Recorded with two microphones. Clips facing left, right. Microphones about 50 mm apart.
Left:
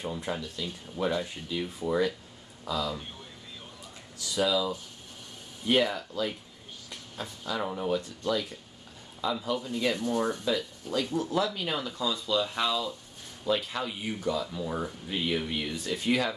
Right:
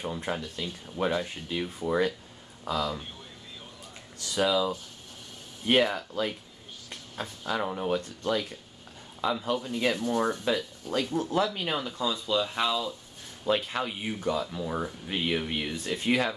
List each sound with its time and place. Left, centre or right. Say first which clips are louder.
0.1 s speech: right 1 dB; right
4.4 s speech: right 2 dB; right
8.2 s speech: right 1 dB; right
9.9 s speech: right 1 dB; centre
10.4 s speech: right 1 dB; right
11.6 s speech: right 1 dB; centre
13.5 s speech: right 2 dB; right
14.5 s speech: right 1 dB; centre
15.0 s speech: right 1 dB; right